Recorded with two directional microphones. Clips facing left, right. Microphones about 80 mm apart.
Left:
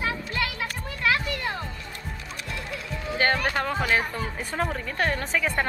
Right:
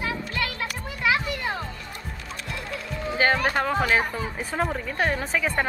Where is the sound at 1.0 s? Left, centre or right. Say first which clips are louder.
Right 1 dB; centre.